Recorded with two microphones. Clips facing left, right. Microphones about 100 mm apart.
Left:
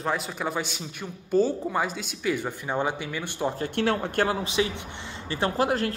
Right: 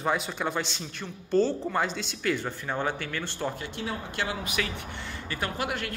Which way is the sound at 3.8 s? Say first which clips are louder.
Left 11 dB; 70° left (ahead or behind).